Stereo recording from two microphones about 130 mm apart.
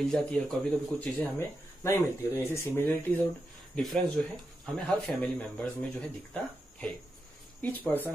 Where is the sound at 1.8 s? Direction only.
20° left (ahead or behind).